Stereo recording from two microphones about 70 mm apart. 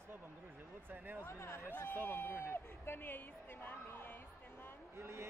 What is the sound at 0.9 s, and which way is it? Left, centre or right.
Speech, right.